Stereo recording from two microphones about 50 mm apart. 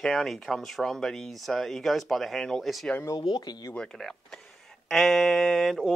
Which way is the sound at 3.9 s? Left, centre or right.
Centre.